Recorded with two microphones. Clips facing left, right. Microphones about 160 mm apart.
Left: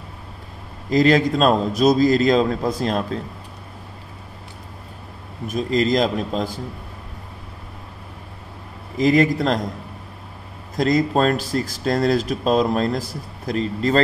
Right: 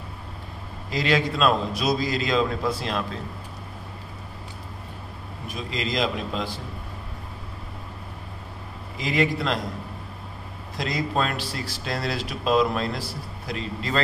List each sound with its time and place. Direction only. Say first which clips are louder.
0.8 s speech: left 8 dB; 45° left (ahead or behind)
5.5 s speech: left 11 dB; 45° left (ahead or behind)
8.9 s speech: left 8 dB; 40° left (ahead or behind)
10.8 s speech: left 8 dB; 45° left (ahead or behind)